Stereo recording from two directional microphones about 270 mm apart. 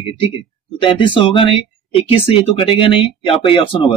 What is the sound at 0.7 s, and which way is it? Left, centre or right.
Speech, centre.